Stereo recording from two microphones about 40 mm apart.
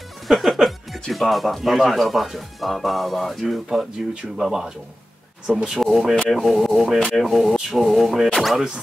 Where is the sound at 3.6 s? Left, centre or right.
Right.